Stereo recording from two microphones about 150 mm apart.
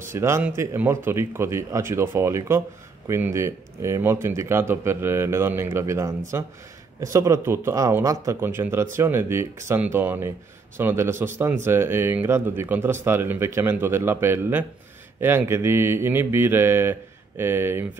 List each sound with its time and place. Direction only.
0.1 s speech: 15° right (ahead or behind)